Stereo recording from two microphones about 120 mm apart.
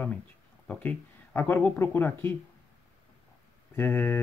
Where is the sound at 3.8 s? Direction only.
15° left (ahead or behind).